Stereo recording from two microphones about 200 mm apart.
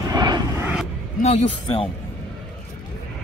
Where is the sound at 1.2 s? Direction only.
30° left (ahead or behind).